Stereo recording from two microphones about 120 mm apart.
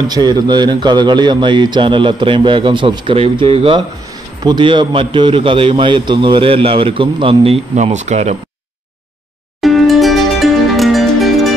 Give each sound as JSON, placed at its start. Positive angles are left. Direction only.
{"t": 0.1, "sound": "a man's voice", "side_deg": -35}
{"t": 7.7, "sound": "speech", "side_deg": -80}
{"t": 9.6, "sound": "music", "side_deg": 0}